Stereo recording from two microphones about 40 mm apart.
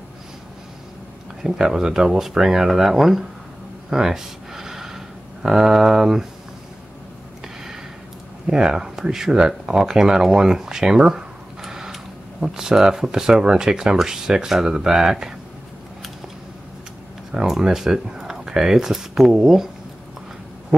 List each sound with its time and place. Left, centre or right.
1.4 s speech: centre
3.9 s a sound: centre
8.5 s speech: centre
17.3 s speech: centre